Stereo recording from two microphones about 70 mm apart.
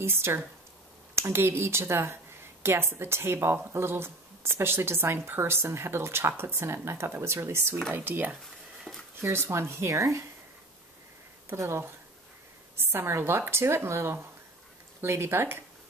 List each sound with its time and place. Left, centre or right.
0.0 s speech: right
8.9 s a sound: centre
9.2 s speech: right
11.5 s speech: right